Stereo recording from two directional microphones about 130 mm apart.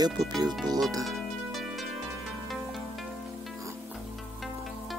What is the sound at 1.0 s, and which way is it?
Music, centre (ahead or behind).